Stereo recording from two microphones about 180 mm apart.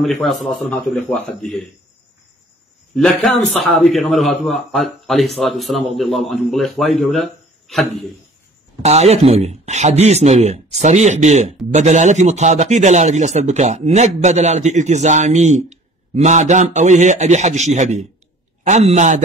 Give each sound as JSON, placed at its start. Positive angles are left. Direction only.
{"t": 0.2, "sound": "a man's voice", "side_deg": 0}
{"t": 2.9, "sound": "a man's voice", "side_deg": 0}
{"t": 8.8, "sound": "speech", "side_deg": -35}